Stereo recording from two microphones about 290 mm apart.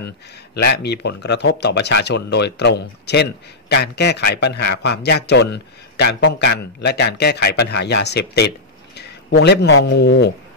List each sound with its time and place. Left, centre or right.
0.6 s speech: left